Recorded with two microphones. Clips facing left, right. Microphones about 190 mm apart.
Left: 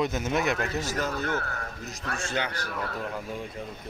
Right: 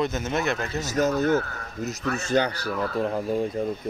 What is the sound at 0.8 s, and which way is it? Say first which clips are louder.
Speech: right 7 dB; 40° right (ahead or behind).